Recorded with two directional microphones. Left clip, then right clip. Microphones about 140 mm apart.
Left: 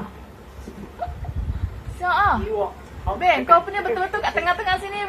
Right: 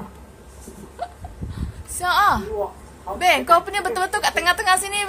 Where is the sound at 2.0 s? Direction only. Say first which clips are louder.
Right 1 dB; 55° right (ahead or behind).